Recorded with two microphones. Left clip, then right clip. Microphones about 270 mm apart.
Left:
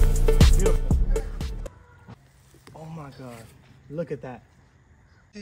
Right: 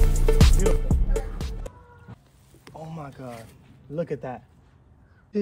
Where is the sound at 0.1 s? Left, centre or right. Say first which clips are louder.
Left 1 dB; centre.